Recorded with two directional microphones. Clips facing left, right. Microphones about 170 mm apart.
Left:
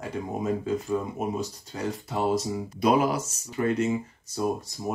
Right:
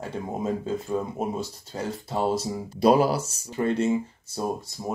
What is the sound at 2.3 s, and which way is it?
Speech, 30° right (ahead or behind).